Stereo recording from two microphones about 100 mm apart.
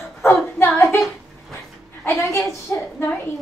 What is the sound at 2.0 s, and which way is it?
Speech, 25° left (ahead or behind).